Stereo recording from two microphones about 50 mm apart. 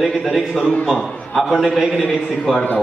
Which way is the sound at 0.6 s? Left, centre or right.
Left.